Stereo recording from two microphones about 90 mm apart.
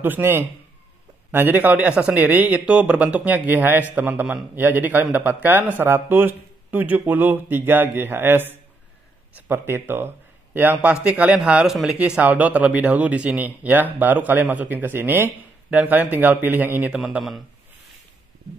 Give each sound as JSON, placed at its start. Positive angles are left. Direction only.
{"t": 0.0, "sound": "a man's voice", "side_deg": -25}
{"t": 12.2, "sound": "speech", "side_deg": -20}
{"t": 16.9, "sound": "a man's voice", "side_deg": -5}